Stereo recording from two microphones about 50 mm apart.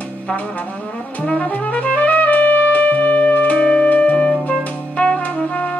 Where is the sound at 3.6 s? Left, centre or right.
Centre.